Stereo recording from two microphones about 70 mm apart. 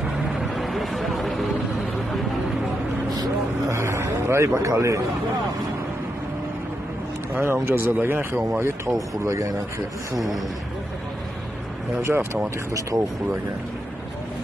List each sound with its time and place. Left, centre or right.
0.3 s vehicle: centre
3.7 s vehicle: right
4.6 s a man's voice: right
7.3 s a man's voice: right
10.1 s speech: centre
12.0 s speech: right
12.9 s speech: right